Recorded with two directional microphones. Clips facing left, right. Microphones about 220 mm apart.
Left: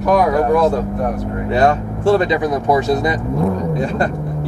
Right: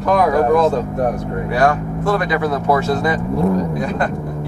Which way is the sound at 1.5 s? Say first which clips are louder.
Left 2 dB; 25° left (ahead or behind).